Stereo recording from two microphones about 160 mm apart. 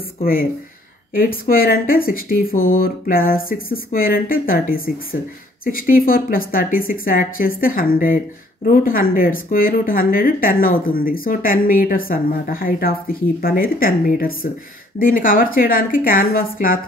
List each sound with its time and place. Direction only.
0.2 s speech: 65° left (ahead or behind)